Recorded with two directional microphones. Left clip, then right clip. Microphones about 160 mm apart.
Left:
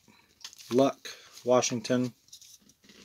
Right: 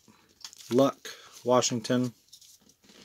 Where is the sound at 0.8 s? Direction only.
20° right (ahead or behind).